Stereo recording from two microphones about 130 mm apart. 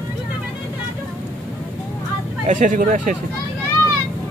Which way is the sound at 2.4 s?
75° right (ahead or behind).